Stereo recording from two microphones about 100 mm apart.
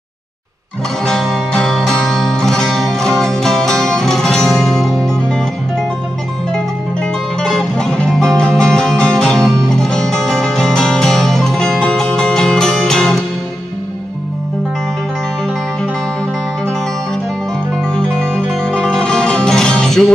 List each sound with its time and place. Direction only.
1.0 s music: 5° left (ahead or behind)
7.4 s music: 5° left (ahead or behind)
17.8 s music: 5° left (ahead or behind)